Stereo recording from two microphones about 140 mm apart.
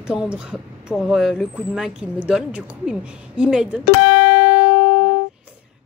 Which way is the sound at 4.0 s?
90° left.